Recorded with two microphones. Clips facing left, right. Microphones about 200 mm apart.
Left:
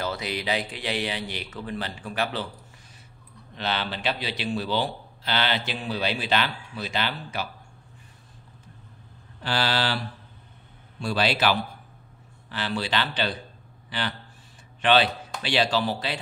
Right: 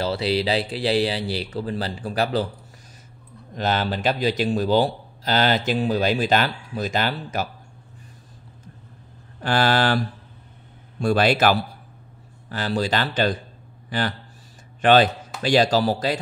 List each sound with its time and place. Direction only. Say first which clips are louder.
0.0 s speech: right 7 dB; 30° right (ahead or behind)
3.5 s speech: right 6 dB; 45° right (ahead or behind)
9.4 s speech: right 6 dB; 50° right (ahead or behind)